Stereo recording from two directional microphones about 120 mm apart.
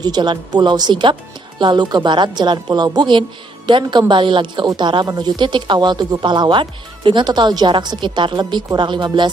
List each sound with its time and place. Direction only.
0.0 s speech: 35° right (ahead or behind)